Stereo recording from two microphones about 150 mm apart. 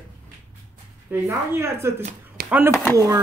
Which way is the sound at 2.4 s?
90° right.